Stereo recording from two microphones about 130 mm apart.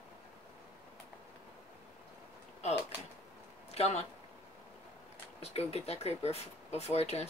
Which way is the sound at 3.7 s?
55° left (ahead or behind).